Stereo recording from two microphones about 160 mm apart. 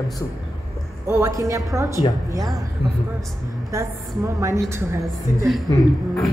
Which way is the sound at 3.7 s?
20° right (ahead or behind).